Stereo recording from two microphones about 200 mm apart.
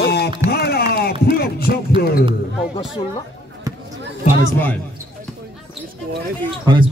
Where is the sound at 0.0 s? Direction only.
55° left (ahead or behind).